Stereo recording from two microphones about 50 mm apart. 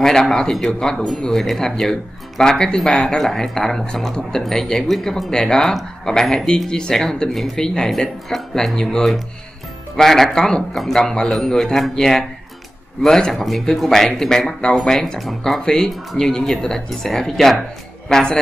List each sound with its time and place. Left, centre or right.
0.0 s speech: centre
15.6 s speech: centre